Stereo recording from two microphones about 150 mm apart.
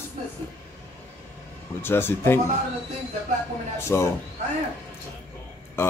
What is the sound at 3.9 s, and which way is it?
Speech, 10° left (ahead or behind).